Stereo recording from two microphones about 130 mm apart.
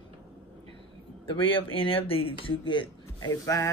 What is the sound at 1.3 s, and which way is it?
Speech, 40° left (ahead or behind).